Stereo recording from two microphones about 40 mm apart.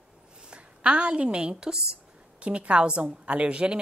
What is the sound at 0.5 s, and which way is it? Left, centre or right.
A woman's voice, right.